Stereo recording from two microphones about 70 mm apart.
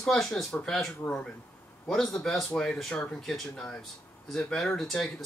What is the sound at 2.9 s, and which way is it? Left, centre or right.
Speech, centre.